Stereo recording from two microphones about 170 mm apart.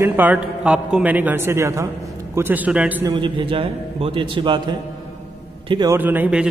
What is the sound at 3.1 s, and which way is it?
A man's voice, 30° right (ahead or behind).